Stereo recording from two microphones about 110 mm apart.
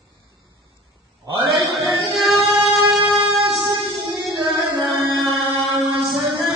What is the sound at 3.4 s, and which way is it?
Music, 35° right (ahead or behind).